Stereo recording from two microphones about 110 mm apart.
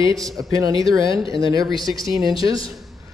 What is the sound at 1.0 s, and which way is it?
Speech, 50° left (ahead or behind).